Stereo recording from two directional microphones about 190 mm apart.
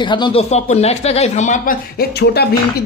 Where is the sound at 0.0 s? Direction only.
25° left (ahead or behind); by 2.4 s 55° left (ahead or behind).